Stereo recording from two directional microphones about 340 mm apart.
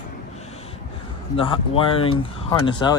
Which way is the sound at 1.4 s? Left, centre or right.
Centre.